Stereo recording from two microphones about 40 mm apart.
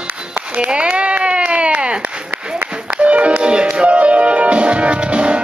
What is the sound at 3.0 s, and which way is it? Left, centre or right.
Music, right.